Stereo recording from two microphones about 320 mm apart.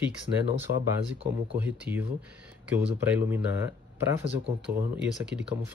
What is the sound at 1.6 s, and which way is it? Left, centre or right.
Speech, centre.